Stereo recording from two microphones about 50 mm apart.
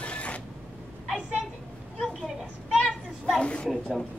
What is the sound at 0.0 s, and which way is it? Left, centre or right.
Zipper, left.